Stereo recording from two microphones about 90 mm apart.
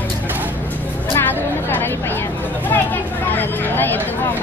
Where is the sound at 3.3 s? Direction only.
25° left (ahead or behind).